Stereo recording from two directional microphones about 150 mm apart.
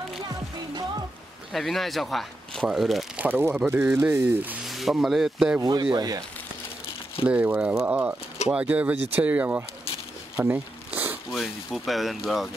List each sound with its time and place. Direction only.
1.5 s speech: centre (ahead or behind)
3.3 s speech: 15° right (ahead or behind)
4.6 s speech: centre (ahead or behind)
5.6 s speech: 25° right (ahead or behind)
7.2 s speech: 10° right (ahead or behind)
10.3 s zipper: 10° right (ahead or behind)
11.3 s speech: centre (ahead or behind)